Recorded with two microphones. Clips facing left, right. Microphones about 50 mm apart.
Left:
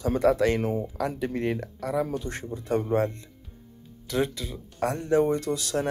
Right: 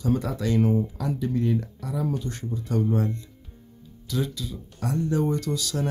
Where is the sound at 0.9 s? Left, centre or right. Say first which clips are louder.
Right 1 dB; left.